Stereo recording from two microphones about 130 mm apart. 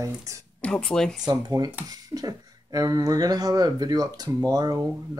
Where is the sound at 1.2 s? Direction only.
30° right (ahead or behind).